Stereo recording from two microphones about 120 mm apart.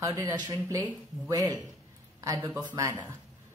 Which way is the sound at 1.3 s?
30° right (ahead or behind).